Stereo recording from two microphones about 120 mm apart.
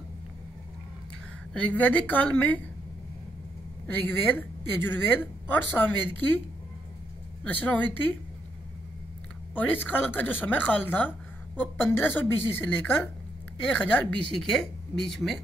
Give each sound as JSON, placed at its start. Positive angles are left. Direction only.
{"t": 1.5, "sound": "a woman's voice", "side_deg": 10}
{"t": 3.8, "sound": "a woman's voice", "side_deg": 15}
{"t": 7.4, "sound": "a woman's voice", "side_deg": 15}
{"t": 9.6, "sound": "a woman's voice", "side_deg": 15}